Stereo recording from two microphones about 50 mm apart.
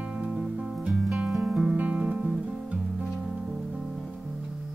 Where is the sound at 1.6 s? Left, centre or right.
Right.